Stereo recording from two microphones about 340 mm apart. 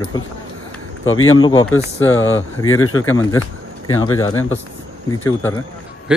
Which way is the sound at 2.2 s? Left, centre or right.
Left.